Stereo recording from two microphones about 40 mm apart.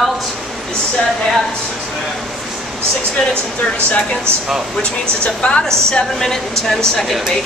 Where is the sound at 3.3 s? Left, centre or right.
Right.